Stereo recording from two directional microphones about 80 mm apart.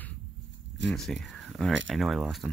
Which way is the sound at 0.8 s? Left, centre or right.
Centre.